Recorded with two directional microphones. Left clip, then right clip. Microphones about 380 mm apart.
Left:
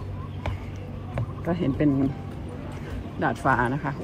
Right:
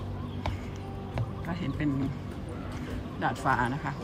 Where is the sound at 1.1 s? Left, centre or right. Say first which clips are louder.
Left 9 dB; centre.